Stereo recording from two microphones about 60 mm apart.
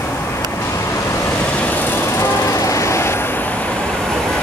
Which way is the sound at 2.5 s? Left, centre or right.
Left.